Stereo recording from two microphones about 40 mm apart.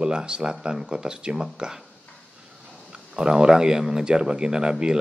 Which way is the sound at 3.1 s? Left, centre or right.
Centre.